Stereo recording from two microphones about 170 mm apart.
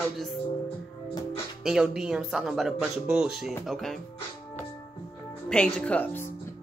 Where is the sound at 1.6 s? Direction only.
5° right (ahead or behind).